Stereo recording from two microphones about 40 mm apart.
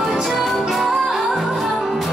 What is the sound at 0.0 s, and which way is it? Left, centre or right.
Music, centre.